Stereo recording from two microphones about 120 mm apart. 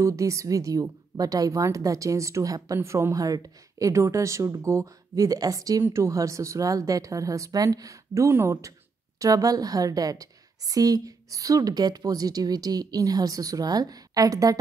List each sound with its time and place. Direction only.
0.0 s a woman's voice: 25° right (ahead or behind)